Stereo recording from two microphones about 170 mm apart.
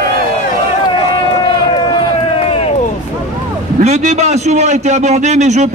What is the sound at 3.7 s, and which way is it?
A man's voice, 40° right (ahead or behind).